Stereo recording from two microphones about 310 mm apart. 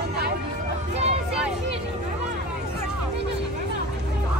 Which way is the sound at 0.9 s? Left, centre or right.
Centre.